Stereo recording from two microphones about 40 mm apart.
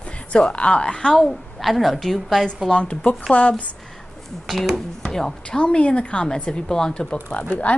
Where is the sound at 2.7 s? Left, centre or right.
Left.